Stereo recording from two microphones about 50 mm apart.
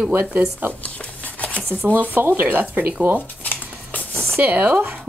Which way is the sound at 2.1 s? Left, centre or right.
Right.